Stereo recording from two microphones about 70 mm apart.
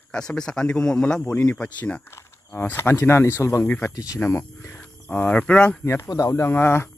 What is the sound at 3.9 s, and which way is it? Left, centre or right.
Speech, left.